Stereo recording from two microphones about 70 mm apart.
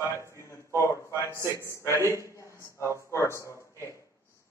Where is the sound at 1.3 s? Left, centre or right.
Left.